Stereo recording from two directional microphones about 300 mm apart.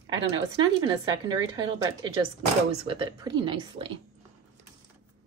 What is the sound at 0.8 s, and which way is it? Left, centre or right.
Speech, centre.